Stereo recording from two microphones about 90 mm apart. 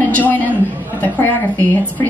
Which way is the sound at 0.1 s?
20° left (ahead or behind).